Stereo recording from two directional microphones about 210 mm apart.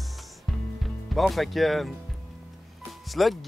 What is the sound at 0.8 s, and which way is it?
Speech, centre (ahead or behind).